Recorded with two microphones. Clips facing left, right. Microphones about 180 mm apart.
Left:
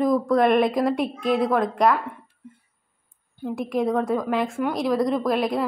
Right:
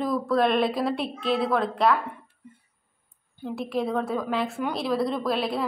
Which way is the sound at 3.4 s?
15° left (ahead or behind).